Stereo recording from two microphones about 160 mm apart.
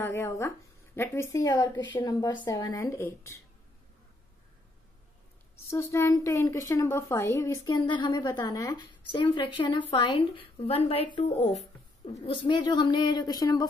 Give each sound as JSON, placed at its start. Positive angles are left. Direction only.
{"t": 0.0, "sound": "a woman's voice", "side_deg": 15}
{"t": 5.7, "sound": "a woman's voice", "side_deg": 15}
{"t": 12.1, "sound": "a woman's voice", "side_deg": 35}